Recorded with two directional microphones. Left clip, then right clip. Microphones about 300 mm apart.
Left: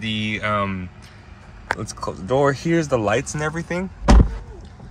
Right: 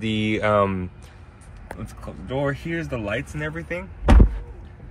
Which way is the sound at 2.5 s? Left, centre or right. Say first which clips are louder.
Left 9 dB; left.